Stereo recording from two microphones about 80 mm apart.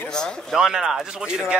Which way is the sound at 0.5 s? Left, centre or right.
Centre.